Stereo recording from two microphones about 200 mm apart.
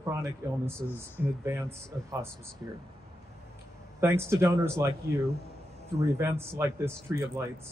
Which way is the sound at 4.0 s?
15° right (ahead or behind).